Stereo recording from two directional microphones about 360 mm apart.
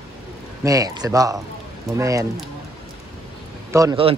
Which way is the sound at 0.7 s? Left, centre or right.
Centre.